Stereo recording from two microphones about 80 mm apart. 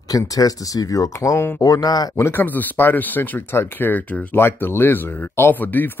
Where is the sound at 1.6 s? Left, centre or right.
Left.